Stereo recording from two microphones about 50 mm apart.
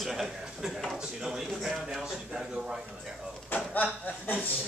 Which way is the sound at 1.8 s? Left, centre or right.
Centre.